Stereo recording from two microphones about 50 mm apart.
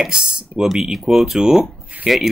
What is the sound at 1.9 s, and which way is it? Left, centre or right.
Speech, right.